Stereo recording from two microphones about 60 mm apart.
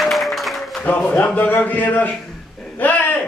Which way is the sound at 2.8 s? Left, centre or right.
Left.